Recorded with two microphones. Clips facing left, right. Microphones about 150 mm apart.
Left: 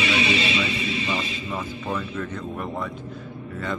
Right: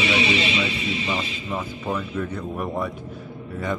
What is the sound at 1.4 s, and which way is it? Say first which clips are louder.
Speech: right 2 dB; 10° right (ahead or behind).